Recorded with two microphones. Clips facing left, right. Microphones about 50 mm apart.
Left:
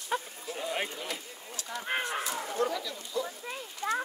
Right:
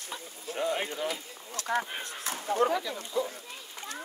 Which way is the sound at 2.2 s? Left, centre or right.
Right.